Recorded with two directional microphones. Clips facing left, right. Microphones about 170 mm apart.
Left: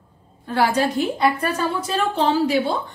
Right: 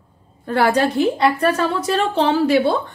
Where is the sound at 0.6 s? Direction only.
60° right (ahead or behind).